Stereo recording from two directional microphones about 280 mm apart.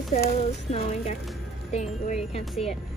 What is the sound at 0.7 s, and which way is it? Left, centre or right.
Speech, left.